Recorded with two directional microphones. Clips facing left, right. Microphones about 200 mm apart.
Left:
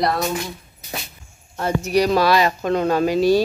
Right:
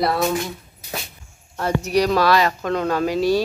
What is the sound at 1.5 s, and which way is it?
Speech, 5° left (ahead or behind).